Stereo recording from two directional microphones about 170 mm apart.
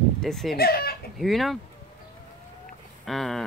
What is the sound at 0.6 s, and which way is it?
Speech, 65° left (ahead or behind).